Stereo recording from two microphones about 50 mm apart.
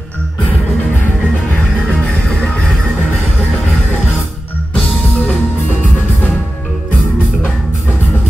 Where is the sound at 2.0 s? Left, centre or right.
Left.